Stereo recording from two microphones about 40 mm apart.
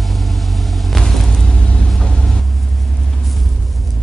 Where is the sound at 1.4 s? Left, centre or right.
Left.